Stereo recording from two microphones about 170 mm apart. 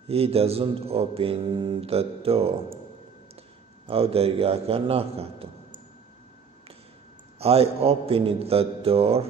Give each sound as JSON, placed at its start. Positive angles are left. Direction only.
{"t": 0.1, "sound": "a man's voice", "side_deg": -35}
{"t": 3.8, "sound": "a man's voice", "side_deg": -35}
{"t": 7.3, "sound": "a man's voice", "side_deg": -35}